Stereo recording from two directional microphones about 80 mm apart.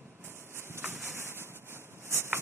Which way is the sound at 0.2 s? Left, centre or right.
Right.